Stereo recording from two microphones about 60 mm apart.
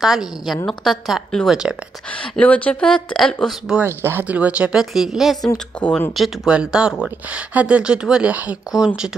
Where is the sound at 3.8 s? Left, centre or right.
Right.